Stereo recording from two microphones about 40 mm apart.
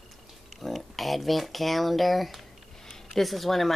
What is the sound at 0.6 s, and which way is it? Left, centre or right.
Speech, centre.